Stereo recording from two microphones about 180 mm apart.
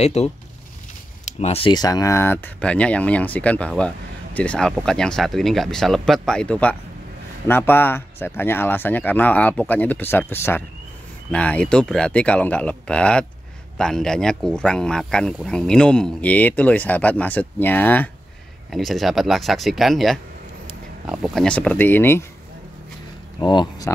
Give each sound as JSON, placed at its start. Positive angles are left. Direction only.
{"t": 0.0, "sound": "speech", "side_deg": 35}
{"t": 23.4, "sound": "speech", "side_deg": 25}